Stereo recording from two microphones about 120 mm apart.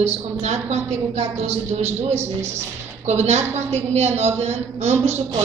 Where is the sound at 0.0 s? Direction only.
65° right (ahead or behind).